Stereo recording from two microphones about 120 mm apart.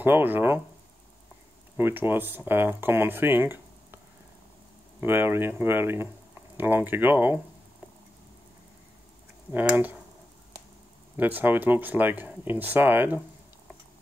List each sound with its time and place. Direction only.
0.0 s speech: 15° right (ahead or behind)
1.8 s speech: 20° right (ahead or behind)
5.0 s speech: 20° right (ahead or behind)
9.5 s speech: 15° right (ahead or behind)
11.1 s speech: 15° right (ahead or behind)